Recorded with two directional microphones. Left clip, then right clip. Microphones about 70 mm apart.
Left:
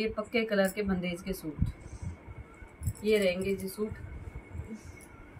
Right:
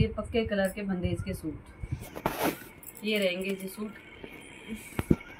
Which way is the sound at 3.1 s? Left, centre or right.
Left.